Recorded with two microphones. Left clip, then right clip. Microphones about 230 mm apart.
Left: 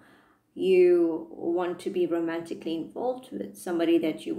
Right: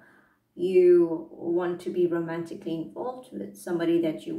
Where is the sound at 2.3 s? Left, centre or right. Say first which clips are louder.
Left 1 dB; left.